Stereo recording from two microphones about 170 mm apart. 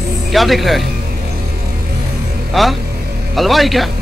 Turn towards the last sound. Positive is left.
turn(degrees=0)  # may be behind; listen again after turning